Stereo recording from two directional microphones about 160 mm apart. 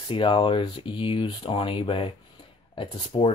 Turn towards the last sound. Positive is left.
turn(degrees=35)  # may be behind; listen again after turning